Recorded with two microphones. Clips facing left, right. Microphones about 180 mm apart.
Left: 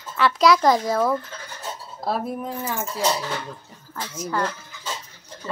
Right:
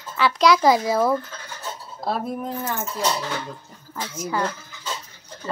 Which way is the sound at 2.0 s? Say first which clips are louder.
Even; 5° left (ahead or behind).